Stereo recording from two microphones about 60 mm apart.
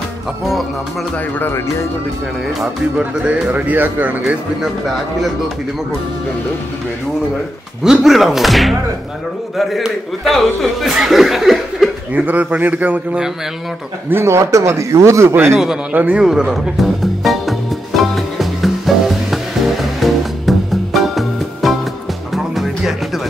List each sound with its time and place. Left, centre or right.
3.5 s speech: right
4.6 s speech: centre
7.8 s speech: centre
12.1 s speech: right
14.1 s speech: right
15.5 s speech: centre
15.9 s speech: right
16.2 s speech: centre
16.8 s music: centre